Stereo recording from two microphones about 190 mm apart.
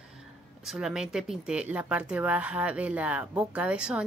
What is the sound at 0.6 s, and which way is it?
Speech, centre (ahead or behind).